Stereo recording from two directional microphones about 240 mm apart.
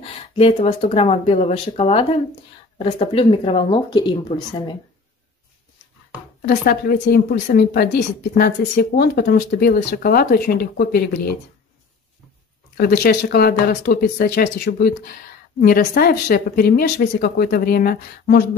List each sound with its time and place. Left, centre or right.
0.0 s speech: left
6.4 s a woman's voice: left
12.7 s a woman's voice: left